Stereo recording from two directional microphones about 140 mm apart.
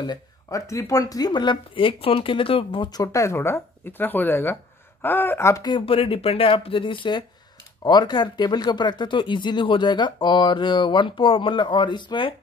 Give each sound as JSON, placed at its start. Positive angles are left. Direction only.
{"t": 0.0, "sound": "speech", "side_deg": 25}